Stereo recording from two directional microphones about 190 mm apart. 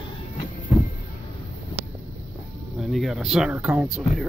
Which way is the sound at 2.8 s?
Centre (ahead or behind).